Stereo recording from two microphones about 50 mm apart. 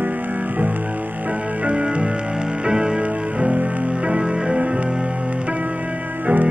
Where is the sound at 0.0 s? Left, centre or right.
Right; by 3.1 s centre.